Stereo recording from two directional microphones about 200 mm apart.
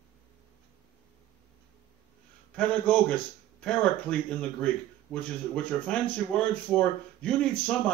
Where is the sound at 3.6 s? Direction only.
5° left (ahead or behind).